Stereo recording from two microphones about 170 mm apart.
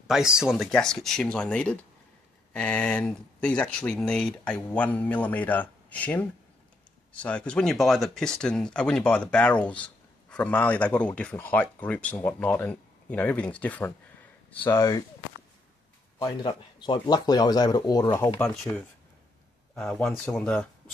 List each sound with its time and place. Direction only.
0.1 s speech: 5° right (ahead or behind)
14.7 s speech: 20° left (ahead or behind)
16.2 s speech: 25° left (ahead or behind)
19.7 s speech: centre (ahead or behind)